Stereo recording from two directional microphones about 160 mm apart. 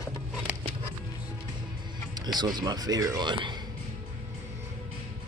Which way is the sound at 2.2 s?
25° right (ahead or behind).